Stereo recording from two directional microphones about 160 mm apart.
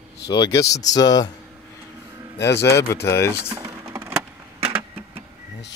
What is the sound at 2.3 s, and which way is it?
Speech, 90° left.